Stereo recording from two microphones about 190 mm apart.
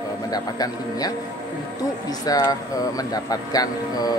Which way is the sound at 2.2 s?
20° left (ahead or behind).